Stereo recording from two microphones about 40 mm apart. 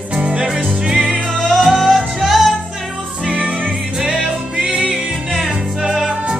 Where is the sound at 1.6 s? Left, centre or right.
Centre.